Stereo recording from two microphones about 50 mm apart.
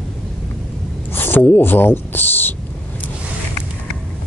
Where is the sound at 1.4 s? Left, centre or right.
Left.